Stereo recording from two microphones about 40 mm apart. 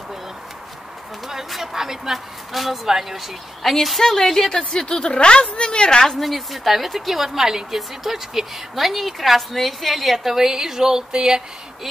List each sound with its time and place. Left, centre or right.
1.5 s a woman's voice: centre
4.0 s a woman's voice: centre
4.6 s a woman's voice: left
6.1 s a woman's voice: centre